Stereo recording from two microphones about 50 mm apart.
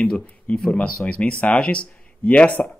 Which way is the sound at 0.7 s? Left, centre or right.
Left.